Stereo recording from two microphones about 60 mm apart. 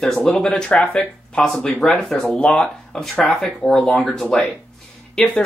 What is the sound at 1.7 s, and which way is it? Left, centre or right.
Speech, centre.